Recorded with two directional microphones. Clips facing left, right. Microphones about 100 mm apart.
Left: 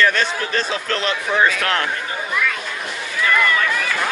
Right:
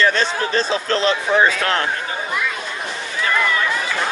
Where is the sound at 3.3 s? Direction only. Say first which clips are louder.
Even; 15° right (ahead or behind).